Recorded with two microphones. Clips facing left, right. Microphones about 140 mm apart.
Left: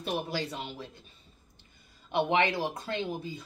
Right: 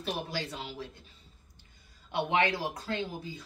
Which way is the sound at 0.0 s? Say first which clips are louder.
Left 3 dB; 25° left (ahead or behind).